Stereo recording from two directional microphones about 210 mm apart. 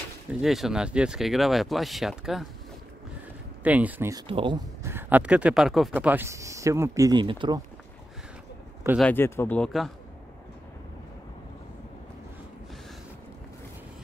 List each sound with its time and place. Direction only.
0.3 s speech: centre (ahead or behind)
3.6 s speech: 5° right (ahead or behind)
4.3 s speech: 25° right (ahead or behind)
4.8 s speech: 10° right (ahead or behind)
9.0 s speech: 10° left (ahead or behind)